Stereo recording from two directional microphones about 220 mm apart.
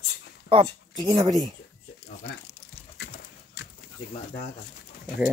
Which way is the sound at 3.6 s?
50° left (ahead or behind).